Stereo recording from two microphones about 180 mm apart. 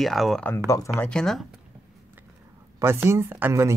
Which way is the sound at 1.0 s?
5° left (ahead or behind).